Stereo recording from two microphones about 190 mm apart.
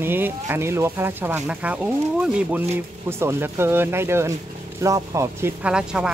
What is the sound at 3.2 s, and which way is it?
Speech, 10° right (ahead or behind).